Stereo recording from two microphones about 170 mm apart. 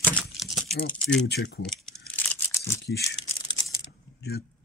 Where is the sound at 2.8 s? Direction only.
80° left.